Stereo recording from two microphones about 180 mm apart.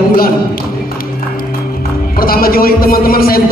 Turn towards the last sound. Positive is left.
turn(degrees=55)  # may be behind; listen again after turning